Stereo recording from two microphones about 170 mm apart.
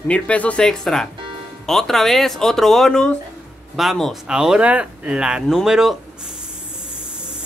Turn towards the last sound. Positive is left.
turn(degrees=0)  # may be behind; listen again after turning